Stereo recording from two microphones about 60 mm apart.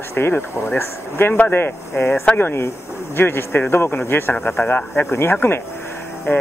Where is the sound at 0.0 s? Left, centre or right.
Left.